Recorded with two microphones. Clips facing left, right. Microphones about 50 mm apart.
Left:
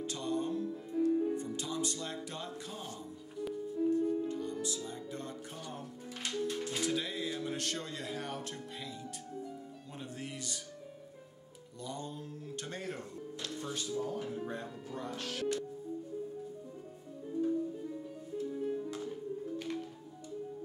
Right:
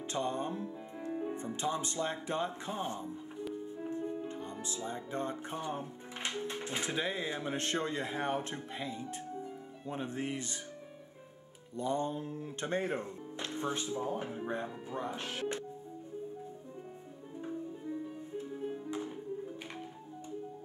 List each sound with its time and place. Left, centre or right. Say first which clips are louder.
0.0 s speech: right 1 dB; right
11.7 s speech: right 9 dB; right
17.3 s music: left 8 dB; right